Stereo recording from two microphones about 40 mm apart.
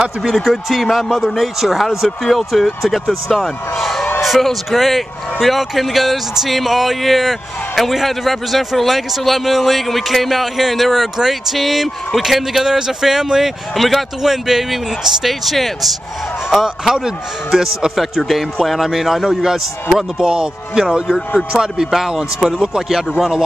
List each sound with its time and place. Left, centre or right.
0.3 s a man's voice: centre
12.6 s a man's voice: centre
16.4 s a man's voice: centre
20.2 s speech: right